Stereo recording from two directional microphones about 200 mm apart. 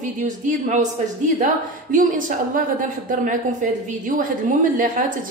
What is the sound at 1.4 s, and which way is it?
Speech, 40° right (ahead or behind).